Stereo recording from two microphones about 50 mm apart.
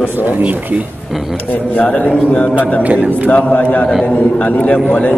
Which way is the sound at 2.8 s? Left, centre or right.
Right.